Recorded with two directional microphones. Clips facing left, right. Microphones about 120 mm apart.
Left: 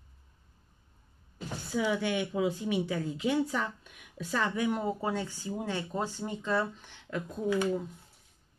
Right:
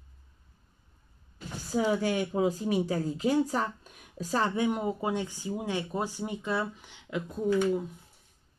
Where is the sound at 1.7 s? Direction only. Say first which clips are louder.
Right 3 dB; 40° right (ahead or behind).